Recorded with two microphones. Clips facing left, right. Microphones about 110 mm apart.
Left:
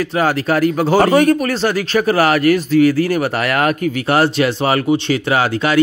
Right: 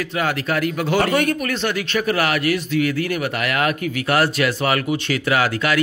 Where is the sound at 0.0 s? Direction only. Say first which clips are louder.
Left 6 dB; 35° left (ahead or behind).